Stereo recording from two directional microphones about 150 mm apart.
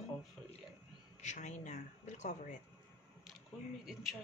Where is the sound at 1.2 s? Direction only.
55° left (ahead or behind).